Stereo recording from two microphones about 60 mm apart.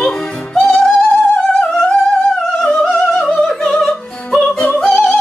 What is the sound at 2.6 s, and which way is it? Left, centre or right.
Opera, centre.